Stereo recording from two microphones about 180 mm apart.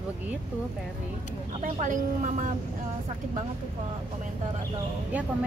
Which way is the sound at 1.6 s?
45° right (ahead or behind).